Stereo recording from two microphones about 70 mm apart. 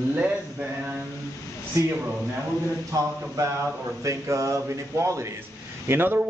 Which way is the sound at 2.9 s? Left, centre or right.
Right.